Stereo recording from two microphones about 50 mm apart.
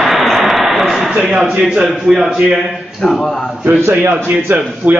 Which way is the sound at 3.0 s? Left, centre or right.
Centre.